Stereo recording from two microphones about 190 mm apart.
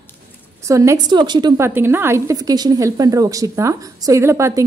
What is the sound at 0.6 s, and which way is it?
Speech, 15° right (ahead or behind).